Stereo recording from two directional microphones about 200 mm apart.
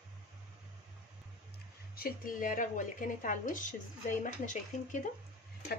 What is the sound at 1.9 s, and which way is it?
A woman's voice, 45° left (ahead or behind).